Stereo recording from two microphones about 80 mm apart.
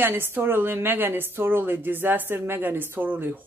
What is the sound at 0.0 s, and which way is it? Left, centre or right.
Speech, right.